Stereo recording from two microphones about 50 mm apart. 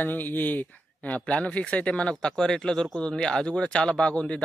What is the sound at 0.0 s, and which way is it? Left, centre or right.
Speech, left.